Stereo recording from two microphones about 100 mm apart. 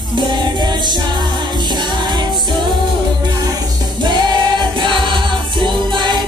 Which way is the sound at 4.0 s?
50° right (ahead or behind).